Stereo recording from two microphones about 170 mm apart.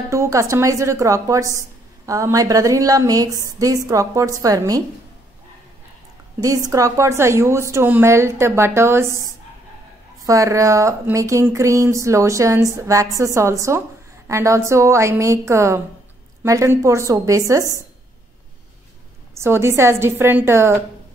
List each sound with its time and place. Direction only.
0.1 s a woman's voice: 15° right (ahead or behind)
6.7 s a woman's voice: 20° right (ahead or behind)
19.3 s speech: 15° right (ahead or behind)